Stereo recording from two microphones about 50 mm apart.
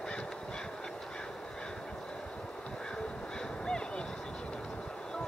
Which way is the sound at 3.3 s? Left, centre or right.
Centre.